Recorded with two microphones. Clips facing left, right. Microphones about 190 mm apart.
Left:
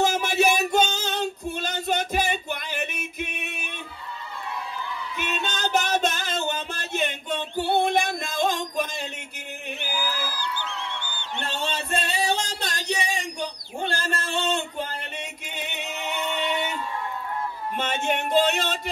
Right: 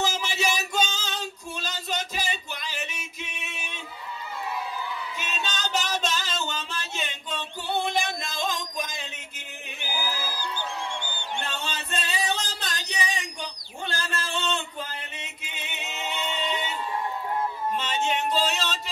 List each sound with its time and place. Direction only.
0.0 s female singing: 55° left (ahead or behind)
5.1 s music: 55° left (ahead or behind)
10.0 s a sound: 15° right (ahead or behind)
11.7 s music: 30° left (ahead or behind)
13.0 s a sound: 55° left (ahead or behind)
17.7 s music: 55° left (ahead or behind)